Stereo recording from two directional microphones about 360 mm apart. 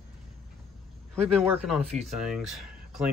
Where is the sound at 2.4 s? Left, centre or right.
Centre.